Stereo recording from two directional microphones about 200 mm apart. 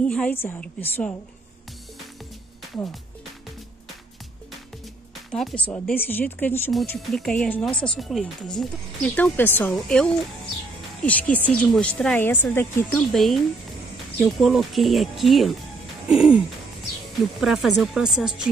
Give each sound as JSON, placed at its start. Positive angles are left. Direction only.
{"t": 0.0, "sound": "speech", "side_deg": 5}
{"t": 2.7, "sound": "speech", "side_deg": 0}
{"t": 5.3, "sound": "speech", "side_deg": 5}
{"t": 14.4, "sound": "speech", "side_deg": 0}